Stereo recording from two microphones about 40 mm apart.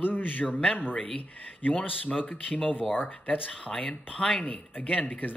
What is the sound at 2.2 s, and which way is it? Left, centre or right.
Speech, left.